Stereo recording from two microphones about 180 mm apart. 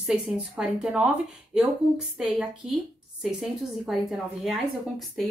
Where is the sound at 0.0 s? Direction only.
5° right (ahead or behind).